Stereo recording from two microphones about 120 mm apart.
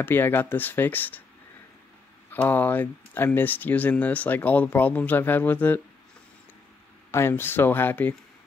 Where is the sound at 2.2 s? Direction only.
15° left (ahead or behind).